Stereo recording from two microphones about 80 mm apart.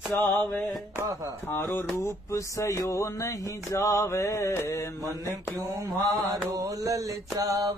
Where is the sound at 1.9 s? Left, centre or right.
Left.